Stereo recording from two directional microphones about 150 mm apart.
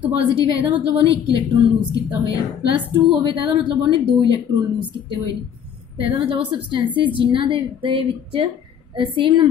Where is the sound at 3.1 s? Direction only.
35° right (ahead or behind).